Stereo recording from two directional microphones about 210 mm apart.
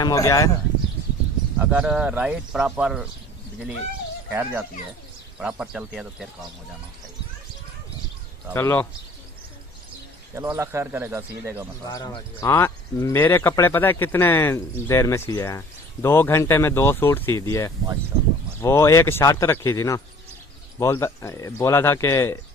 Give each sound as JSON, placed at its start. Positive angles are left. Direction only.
{"t": 0.0, "sound": "speech", "side_deg": 15}
{"t": 1.6, "sound": "speech", "side_deg": -5}
{"t": 4.3, "sound": "speech", "side_deg": -10}
{"t": 8.5, "sound": "speech", "side_deg": 10}
{"t": 10.3, "sound": "speech", "side_deg": -15}
{"t": 11.8, "sound": "speech", "side_deg": 20}